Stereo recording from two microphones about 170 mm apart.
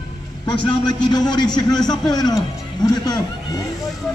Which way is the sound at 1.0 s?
25° left (ahead or behind).